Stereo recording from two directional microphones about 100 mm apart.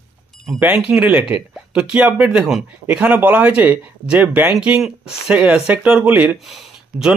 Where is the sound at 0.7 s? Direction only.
5° right (ahead or behind).